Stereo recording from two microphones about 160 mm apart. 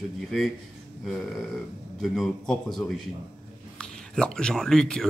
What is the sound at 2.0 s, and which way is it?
A man's voice, centre (ahead or behind).